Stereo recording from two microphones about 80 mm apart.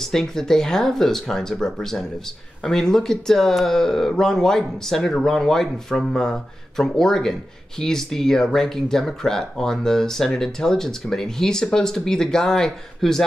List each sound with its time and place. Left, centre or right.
0.0 s speech: centre